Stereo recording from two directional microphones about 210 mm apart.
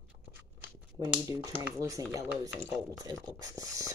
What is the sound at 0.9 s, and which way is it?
Speech, 15° right (ahead or behind).